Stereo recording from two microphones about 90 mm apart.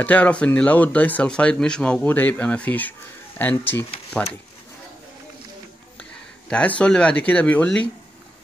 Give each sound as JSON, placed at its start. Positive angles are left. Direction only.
{"t": 0.0, "sound": "speech", "side_deg": 15}
{"t": 4.1, "sound": "speech", "side_deg": 10}
{"t": 6.8, "sound": "speech", "side_deg": 10}